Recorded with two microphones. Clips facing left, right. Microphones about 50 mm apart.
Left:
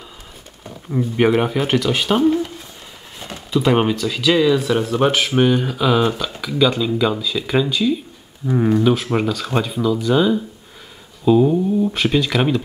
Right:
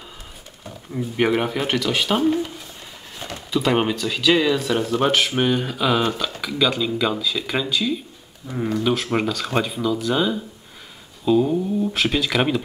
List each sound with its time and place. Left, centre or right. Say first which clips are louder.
0.7 s speech: left 6 dB; centre
3.5 s speech: left 3 dB; centre
4.6 s speech: left 3 dB; centre
8.5 s speech: left 8 dB; left
8.8 s speech: left 4 dB; centre